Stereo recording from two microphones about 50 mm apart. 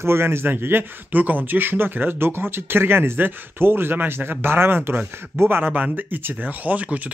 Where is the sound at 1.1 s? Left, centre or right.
Right.